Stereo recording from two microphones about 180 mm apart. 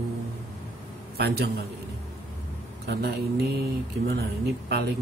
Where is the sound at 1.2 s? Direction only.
65° right (ahead or behind).